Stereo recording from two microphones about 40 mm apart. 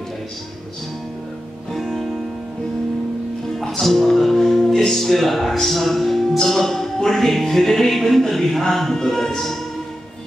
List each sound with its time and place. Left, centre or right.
1.7 s music: centre
3.5 s music: centre
4.8 s speech: centre
6.3 s music: centre